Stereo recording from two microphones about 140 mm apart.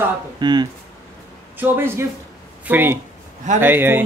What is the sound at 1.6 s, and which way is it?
Speech, 15° right (ahead or behind).